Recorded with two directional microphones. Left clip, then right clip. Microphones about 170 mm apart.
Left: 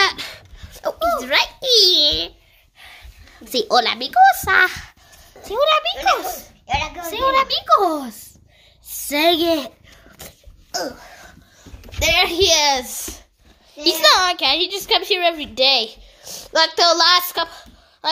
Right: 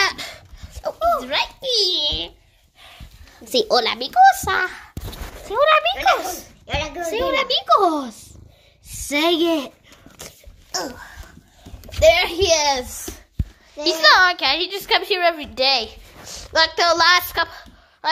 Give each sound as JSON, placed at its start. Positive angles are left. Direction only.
{"t": 0.0, "sound": "a sound", "side_deg": 5}
{"t": 0.9, "sound": "a sound", "side_deg": 45}
{"t": 3.4, "sound": "a child's voice", "side_deg": 0}
{"t": 4.6, "sound": "speech", "side_deg": 30}
{"t": 5.5, "sound": "a child's voice", "side_deg": 15}
{"t": 7.0, "sound": "a child's voice", "side_deg": 15}
{"t": 10.1, "sound": "dog", "side_deg": 10}
{"t": 12.0, "sound": "a child's voice", "side_deg": 30}